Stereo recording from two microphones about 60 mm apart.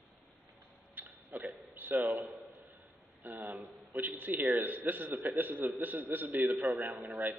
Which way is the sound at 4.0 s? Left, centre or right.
Right.